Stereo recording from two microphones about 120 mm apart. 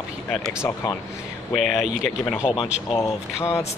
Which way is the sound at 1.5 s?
Centre (ahead or behind).